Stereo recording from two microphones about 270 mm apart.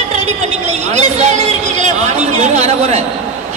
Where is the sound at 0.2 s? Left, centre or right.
Right.